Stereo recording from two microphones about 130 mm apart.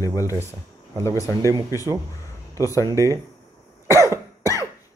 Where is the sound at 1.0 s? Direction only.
25° left (ahead or behind).